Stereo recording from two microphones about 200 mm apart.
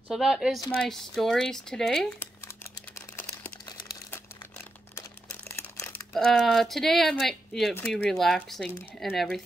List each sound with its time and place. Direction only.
0.1 s speech: centre (ahead or behind)
2.4 s crumpling: 15° left (ahead or behind)
6.1 s speech: centre (ahead or behind)